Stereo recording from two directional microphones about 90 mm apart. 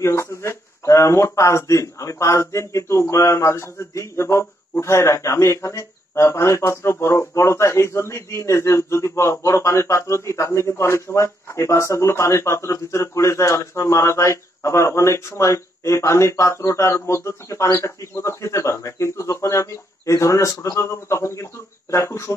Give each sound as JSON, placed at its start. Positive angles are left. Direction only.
{"t": 0.0, "sound": "speech", "side_deg": 30}